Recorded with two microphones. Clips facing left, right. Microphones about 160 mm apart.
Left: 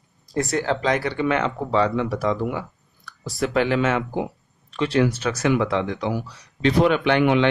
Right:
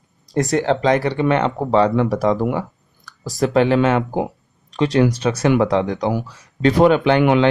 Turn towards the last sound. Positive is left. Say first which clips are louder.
# right 5 dB
turn(degrees=-35)  # may be behind; listen again after turning